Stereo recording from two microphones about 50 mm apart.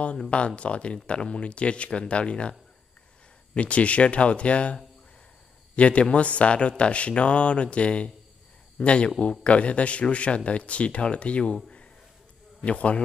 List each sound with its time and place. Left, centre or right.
0.0 s speech: left
3.5 s speech: left
5.8 s speech: left